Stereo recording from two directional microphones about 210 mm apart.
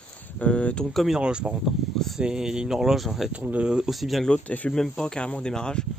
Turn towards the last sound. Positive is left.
turn(degrees=5)  # may be behind; listen again after turning